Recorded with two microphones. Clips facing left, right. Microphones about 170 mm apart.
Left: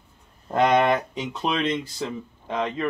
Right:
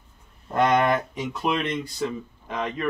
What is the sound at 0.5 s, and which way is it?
Speech, 20° left (ahead or behind).